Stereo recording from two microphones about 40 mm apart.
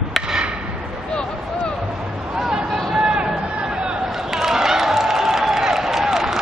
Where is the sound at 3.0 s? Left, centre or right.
Centre.